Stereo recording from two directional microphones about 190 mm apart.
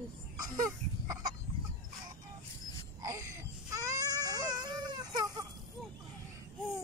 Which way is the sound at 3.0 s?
15° right (ahead or behind).